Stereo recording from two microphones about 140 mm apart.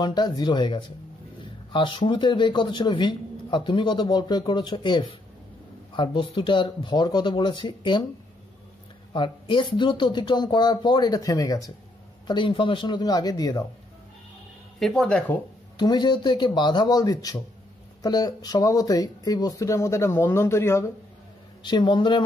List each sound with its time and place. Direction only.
0.0 s speech: 30° left (ahead or behind)
9.1 s speech: 35° left (ahead or behind)
12.3 s speech: 35° left (ahead or behind)
14.8 s speech: centre (ahead or behind)
15.8 s speech: 30° left (ahead or behind)
21.6 s speech: 35° left (ahead or behind)